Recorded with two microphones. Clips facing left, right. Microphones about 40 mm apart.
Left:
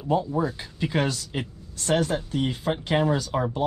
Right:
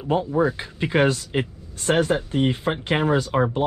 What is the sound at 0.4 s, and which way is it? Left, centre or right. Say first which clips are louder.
Speech: right 5 dB; right.